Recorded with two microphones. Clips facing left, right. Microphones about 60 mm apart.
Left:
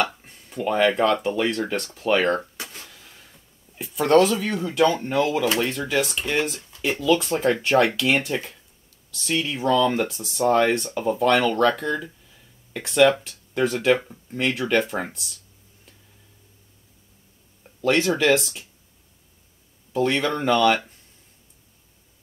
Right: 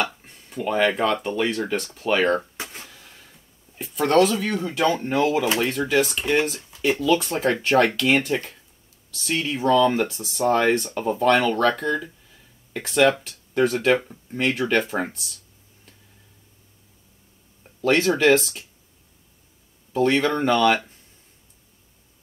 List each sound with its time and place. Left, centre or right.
0.0 s speech: centre
2.6 s a sound: right
2.9 s a sound: centre
5.4 s speech: centre
5.7 s speech: centre
17.6 s speech: centre
19.9 s speech: centre